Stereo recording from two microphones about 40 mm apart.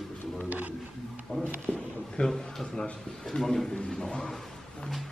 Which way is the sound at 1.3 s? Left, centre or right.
Left.